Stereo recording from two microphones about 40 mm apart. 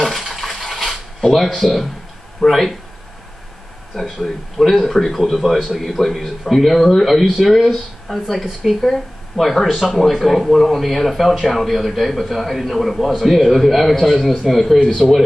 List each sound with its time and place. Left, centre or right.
0.0 s bathtub: centre
0.4 s a sound: centre
2.4 s speech: centre
3.9 s speech: centre